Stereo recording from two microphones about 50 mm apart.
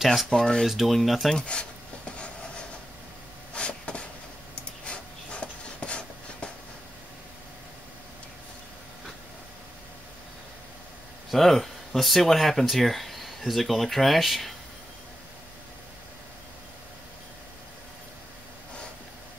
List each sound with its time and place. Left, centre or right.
0.0 s speech: centre
0.3 s speech: centre
0.7 s speech: centre
1.4 s a sound: left
3.5 s vehicle: left
4.8 s a sound: left
11.2 s speech: centre